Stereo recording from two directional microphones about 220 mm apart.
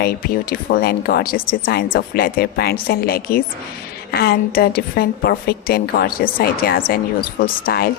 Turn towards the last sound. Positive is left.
turn(degrees=45)  # may be behind; listen again after turning